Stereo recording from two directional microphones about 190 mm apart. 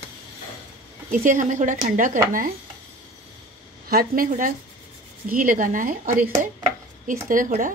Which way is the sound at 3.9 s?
50° right (ahead or behind).